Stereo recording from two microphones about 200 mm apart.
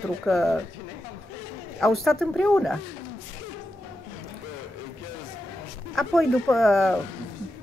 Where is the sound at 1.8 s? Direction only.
Centre (ahead or behind).